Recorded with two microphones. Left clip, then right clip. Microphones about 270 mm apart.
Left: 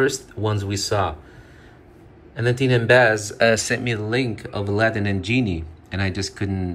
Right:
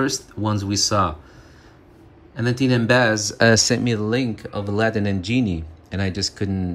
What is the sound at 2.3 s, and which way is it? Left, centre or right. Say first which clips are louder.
Speech: left 1 dB; centre.